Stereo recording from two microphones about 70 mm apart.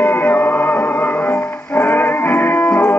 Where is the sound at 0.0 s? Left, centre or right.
Left.